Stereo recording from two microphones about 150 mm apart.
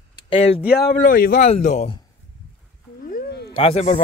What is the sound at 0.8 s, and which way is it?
Speech, 80° left.